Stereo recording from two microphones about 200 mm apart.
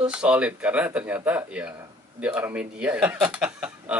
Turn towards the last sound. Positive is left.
turn(degrees=-5)  # may be behind; listen again after turning